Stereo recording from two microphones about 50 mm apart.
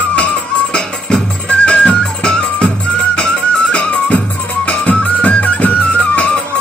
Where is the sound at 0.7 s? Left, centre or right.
Centre.